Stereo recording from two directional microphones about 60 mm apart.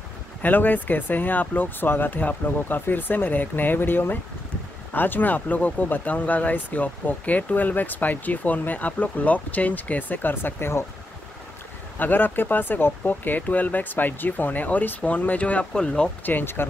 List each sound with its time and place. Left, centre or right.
0.4 s speech: left
12.0 s speech: left
15.7 s speech: centre
16.3 s speech: left